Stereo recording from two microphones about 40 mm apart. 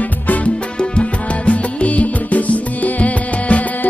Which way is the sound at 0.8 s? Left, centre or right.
Left.